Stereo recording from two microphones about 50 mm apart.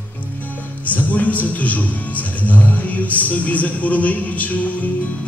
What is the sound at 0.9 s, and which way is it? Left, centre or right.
A man's voice, left.